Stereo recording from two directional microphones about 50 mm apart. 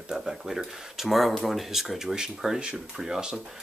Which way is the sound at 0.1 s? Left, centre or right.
Centre.